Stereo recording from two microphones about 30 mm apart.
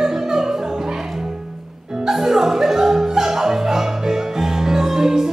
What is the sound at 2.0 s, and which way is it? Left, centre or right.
Music, centre.